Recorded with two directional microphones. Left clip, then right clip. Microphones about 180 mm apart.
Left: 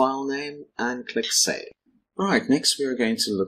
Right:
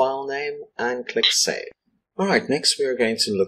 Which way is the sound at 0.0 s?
30° left (ahead or behind).